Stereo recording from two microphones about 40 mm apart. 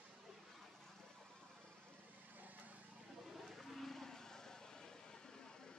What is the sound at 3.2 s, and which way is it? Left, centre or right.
Vehicle, centre.